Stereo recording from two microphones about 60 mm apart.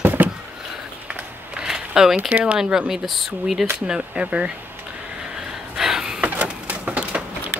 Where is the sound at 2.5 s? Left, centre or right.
Centre.